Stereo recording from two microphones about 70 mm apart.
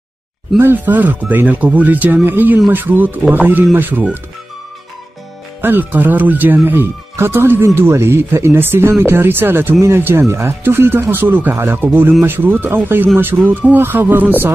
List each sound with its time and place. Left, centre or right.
0.6 s speech: right
5.6 s speech: right